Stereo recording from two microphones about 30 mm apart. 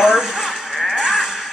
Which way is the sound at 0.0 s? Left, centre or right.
Centre.